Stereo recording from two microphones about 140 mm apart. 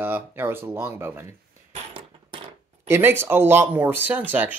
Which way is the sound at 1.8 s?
45° right (ahead or behind).